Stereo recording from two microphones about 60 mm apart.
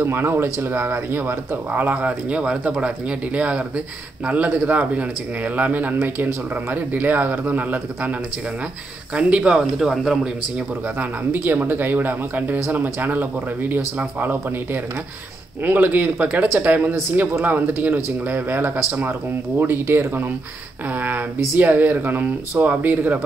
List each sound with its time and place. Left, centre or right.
0.0 s a man's voice: right
9.1 s speech: centre
11.0 s a man's voice: right